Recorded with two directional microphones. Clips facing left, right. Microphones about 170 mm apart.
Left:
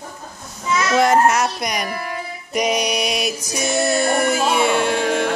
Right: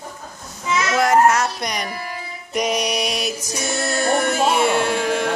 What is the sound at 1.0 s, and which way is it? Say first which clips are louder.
Speech: even; 20° left (ahead or behind).